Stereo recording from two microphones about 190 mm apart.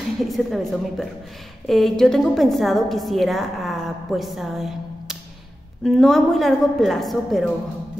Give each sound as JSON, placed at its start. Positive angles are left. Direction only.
{"t": 0.2, "sound": "a woman's voice", "side_deg": 0}